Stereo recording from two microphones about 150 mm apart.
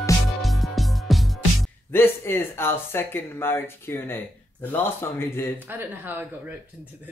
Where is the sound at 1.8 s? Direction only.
15° left (ahead or behind).